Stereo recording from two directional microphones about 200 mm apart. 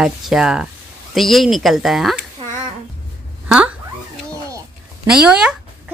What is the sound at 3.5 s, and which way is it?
Cat, 5° right (ahead or behind).